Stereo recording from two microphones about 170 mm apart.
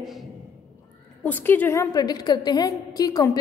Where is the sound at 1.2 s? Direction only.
10° left (ahead or behind).